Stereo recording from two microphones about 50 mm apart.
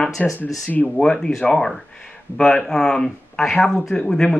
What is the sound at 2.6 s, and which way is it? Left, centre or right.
Speech, centre.